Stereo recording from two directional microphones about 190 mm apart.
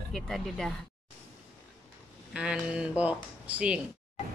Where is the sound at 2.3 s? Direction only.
5° right (ahead or behind).